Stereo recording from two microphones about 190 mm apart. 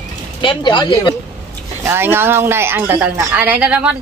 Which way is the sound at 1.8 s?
10° right (ahead or behind).